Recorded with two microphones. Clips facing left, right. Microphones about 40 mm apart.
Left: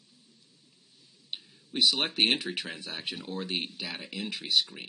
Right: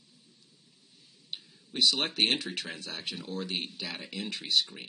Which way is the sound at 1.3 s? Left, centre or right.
Centre.